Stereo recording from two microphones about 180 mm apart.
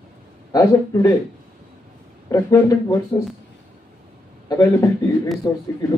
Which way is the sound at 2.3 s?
20° left (ahead or behind).